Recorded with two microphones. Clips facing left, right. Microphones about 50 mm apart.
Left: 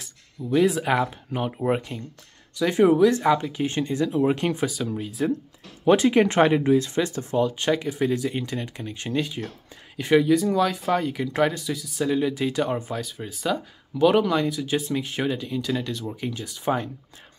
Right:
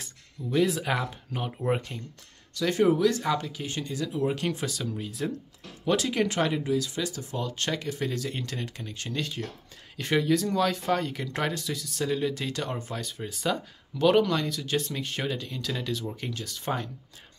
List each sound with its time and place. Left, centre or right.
0.5 s speech: centre
5.9 s speech: left
7.4 s speech: centre
12.9 s speech: centre